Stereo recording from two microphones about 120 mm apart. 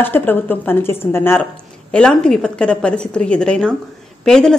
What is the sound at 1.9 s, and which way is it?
A woman's voice, 5° left (ahead or behind).